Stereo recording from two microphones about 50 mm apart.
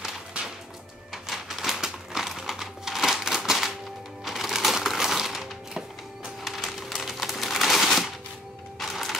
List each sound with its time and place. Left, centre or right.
0.3 s whip: right
1.1 s a sound: centre
4.2 s music: centre
6.4 s typewriter: centre
8.7 s music: centre